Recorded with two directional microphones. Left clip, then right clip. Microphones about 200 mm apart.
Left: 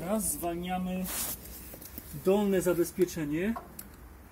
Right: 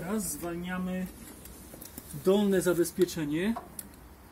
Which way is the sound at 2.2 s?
15° right (ahead or behind).